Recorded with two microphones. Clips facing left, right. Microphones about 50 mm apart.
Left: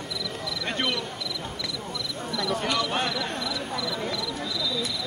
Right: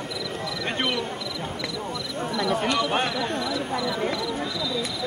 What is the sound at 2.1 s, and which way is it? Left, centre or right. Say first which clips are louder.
Snake: right 4 dB; centre.